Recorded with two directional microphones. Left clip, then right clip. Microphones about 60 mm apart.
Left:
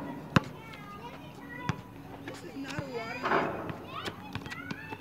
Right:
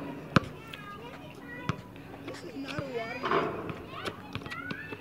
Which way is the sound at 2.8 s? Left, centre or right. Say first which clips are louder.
Right 2 dB; centre.